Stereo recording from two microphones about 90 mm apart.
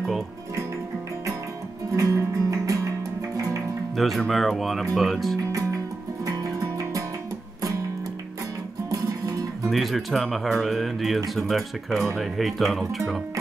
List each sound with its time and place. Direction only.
2.0 s music: 40° right (ahead or behind)
3.9 s speech: centre (ahead or behind)
5.5 s music: 40° right (ahead or behind)
8.9 s music: 40° right (ahead or behind)
9.6 s speech: centre (ahead or behind)